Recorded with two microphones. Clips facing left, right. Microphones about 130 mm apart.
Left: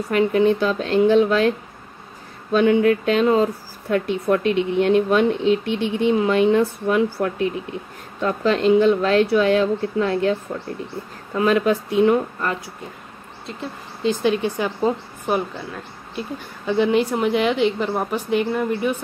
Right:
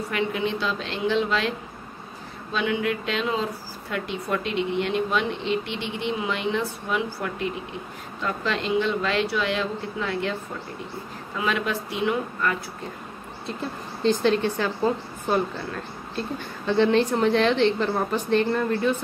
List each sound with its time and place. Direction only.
0.1 s speech: 40° left (ahead or behind)
2.5 s speech: 45° left (ahead or behind)
11.3 s speech: 45° left (ahead or behind)
14.0 s a woman's voice: 10° left (ahead or behind)